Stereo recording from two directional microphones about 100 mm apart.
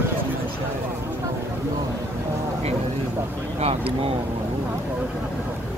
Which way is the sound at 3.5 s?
80° right.